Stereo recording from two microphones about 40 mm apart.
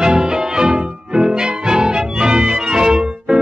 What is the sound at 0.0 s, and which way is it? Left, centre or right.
Music, centre.